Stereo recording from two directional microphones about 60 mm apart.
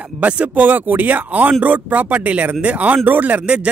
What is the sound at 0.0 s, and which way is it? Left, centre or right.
Speech, right.